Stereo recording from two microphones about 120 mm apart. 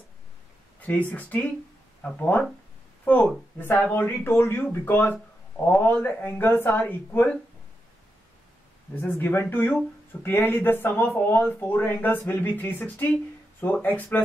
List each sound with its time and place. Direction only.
1.1 s speech: 15° left (ahead or behind)
9.0 s speech: 15° left (ahead or behind)